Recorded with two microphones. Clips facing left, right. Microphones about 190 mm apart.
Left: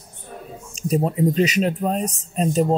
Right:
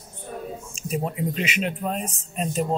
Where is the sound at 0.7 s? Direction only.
35° left (ahead or behind).